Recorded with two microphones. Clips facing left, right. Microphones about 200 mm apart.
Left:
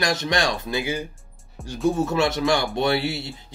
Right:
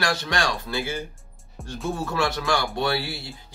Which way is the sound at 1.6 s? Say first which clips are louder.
Left 2 dB; centre (ahead or behind).